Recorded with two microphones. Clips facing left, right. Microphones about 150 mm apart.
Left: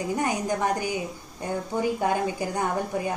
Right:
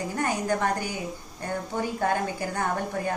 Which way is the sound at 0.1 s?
15° left (ahead or behind).